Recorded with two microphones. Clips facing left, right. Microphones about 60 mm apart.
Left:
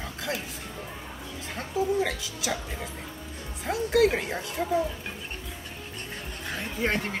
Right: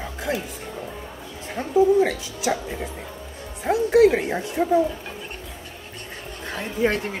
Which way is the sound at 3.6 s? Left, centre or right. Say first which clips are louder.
Right 7 dB; right.